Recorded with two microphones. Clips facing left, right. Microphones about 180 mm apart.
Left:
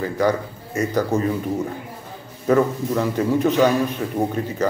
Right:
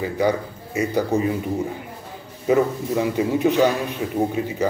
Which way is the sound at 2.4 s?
15° right (ahead or behind).